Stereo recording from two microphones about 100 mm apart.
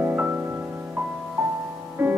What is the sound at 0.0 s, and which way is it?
Music, 15° right (ahead or behind).